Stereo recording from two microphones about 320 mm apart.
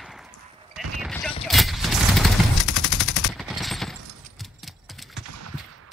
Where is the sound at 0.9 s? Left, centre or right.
Centre.